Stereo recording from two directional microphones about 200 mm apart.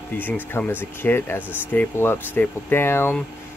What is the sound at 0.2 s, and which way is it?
Speech, 10° left (ahead or behind).